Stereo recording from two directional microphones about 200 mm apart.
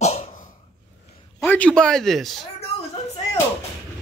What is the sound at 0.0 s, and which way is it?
Cough, 40° left (ahead or behind).